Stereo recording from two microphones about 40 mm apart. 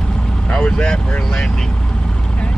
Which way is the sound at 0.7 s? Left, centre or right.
Centre.